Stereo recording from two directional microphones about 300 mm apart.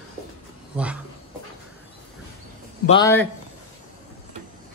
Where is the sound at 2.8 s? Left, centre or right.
Centre.